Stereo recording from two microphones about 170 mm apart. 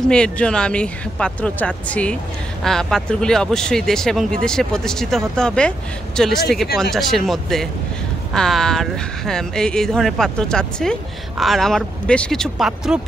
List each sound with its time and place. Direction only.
0.1 s speech: 5° left (ahead or behind)